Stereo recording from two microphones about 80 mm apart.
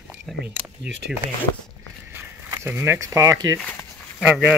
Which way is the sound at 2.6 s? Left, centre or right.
Right.